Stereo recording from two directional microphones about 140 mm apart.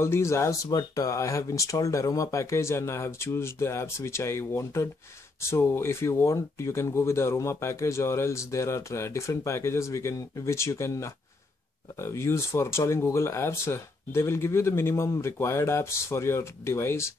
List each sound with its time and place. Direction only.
0.0 s speech: 20° left (ahead or behind)